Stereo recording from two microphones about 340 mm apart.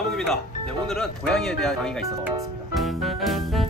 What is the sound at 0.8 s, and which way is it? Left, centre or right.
Music, centre.